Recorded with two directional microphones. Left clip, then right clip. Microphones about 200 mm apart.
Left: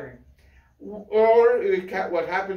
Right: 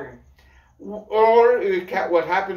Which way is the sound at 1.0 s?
10° right (ahead or behind).